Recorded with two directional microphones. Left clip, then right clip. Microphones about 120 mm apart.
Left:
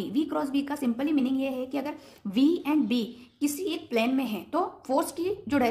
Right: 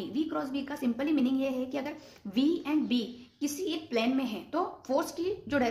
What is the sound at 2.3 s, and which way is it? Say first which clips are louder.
A woman's voice: left 4 dB; 40° left (ahead or behind).